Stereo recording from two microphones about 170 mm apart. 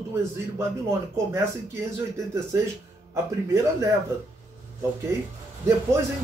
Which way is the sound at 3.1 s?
15° right (ahead or behind).